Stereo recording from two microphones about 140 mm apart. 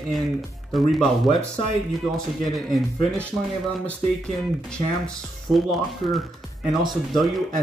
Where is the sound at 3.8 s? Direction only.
5° left (ahead or behind).